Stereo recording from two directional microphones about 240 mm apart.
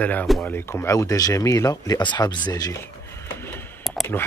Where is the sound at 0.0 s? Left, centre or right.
Centre.